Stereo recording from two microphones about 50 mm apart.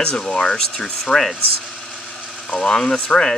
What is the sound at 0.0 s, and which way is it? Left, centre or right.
Speech, centre.